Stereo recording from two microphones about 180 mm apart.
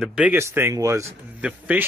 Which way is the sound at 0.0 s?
5° right (ahead or behind).